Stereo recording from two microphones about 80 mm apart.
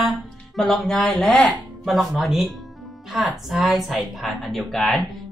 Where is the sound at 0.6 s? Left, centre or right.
Centre.